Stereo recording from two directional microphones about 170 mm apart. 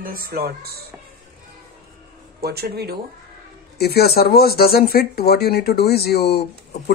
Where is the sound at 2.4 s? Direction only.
65° right (ahead or behind).